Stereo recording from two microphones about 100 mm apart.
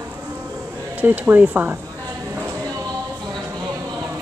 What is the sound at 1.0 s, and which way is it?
Speech, 20° right (ahead or behind).